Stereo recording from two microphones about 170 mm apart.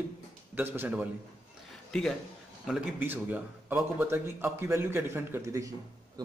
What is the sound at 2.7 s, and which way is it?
A man's voice, 10° right (ahead or behind).